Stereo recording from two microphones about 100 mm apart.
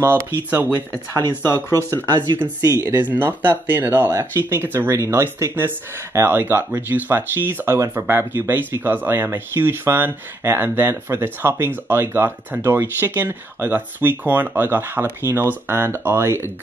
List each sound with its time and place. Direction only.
0.0 s speech: 20° right (ahead or behind)
1.4 s speech: 25° left (ahead or behind)
2.6 s speech: 30° right (ahead or behind)